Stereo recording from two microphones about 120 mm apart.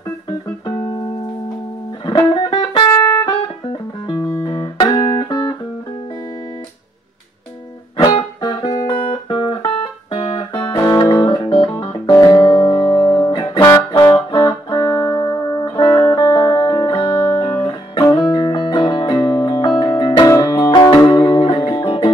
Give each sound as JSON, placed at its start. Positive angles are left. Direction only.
{"t": 2.0, "sound": "music", "side_deg": 45}
{"t": 8.4, "sound": "music", "side_deg": 40}
{"t": 12.1, "sound": "music", "side_deg": 30}
{"t": 12.4, "sound": "music", "side_deg": 40}
{"t": 20.2, "sound": "music", "side_deg": 25}
{"t": 20.7, "sound": "music", "side_deg": 35}